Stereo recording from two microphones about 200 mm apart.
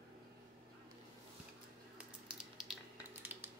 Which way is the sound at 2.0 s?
5° right (ahead or behind).